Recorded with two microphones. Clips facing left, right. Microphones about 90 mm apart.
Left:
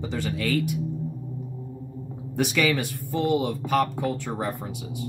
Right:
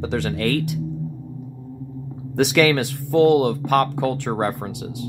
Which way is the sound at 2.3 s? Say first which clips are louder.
Right 6 dB; 75° right (ahead or behind).